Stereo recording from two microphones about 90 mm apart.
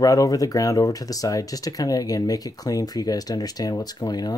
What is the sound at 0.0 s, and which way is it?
Speech, 40° left (ahead or behind).